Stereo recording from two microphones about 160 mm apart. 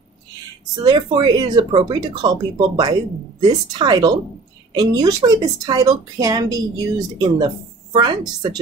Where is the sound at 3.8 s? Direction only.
25° right (ahead or behind).